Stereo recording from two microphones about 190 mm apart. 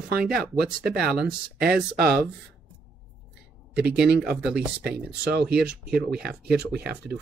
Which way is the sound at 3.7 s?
5° right (ahead or behind).